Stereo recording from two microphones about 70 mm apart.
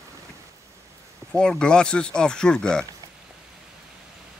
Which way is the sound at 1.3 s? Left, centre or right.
Centre.